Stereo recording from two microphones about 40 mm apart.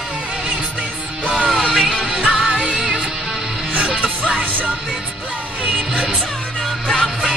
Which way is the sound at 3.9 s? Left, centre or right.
Right.